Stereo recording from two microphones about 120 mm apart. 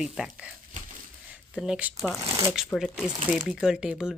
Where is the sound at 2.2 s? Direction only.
30° right (ahead or behind).